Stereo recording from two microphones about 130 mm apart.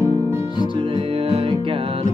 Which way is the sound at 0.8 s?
45° right (ahead or behind).